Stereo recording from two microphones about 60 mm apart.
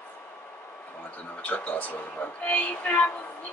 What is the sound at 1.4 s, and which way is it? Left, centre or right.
Speech, left.